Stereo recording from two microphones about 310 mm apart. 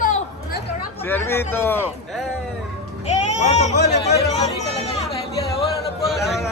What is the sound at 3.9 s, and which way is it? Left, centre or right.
Speech, left.